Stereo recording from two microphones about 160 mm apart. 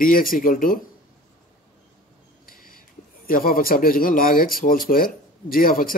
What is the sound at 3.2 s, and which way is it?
A man's voice, 65° left (ahead or behind).